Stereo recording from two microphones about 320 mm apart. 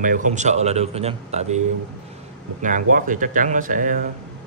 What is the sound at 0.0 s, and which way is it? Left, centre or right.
A man's voice, right.